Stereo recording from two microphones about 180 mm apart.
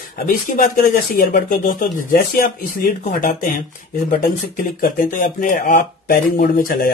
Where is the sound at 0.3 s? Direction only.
50° left (ahead or behind).